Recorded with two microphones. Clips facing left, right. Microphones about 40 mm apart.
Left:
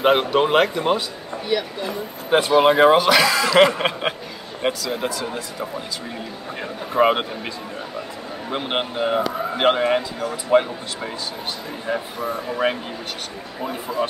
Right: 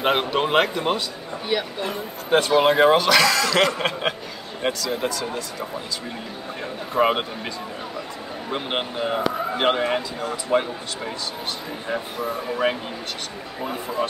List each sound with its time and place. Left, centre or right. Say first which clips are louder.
0.0 s speech: left 4 dB; centre
2.2 s speech: left 2 dB; centre
6.9 s speech: left 3 dB; centre
8.5 s speech: left 2 dB; centre